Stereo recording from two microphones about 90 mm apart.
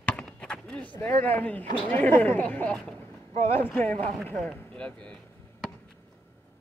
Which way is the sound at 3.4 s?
30° left (ahead or behind).